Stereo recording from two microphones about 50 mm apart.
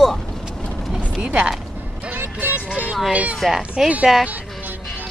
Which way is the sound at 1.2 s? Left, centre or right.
Right.